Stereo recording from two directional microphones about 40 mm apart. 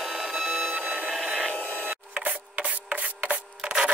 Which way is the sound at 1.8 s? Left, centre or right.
Right.